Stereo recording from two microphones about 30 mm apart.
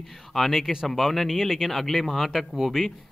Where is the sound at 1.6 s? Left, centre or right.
Centre.